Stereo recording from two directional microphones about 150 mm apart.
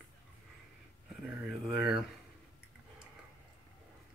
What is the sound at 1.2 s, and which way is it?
Speech, 5° right (ahead or behind).